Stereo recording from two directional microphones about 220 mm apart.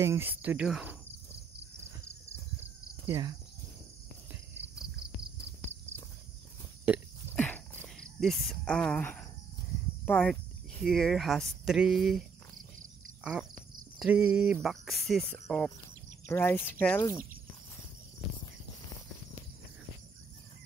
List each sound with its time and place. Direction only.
0.0 s speech: 10° right (ahead or behind)
3.1 s speech: 15° right (ahead or behind)
7.3 s a sound: 5° left (ahead or behind)
10.0 s speech: 5° left (ahead or behind)